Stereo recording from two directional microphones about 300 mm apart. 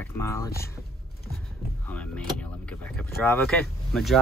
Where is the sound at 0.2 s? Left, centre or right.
Centre.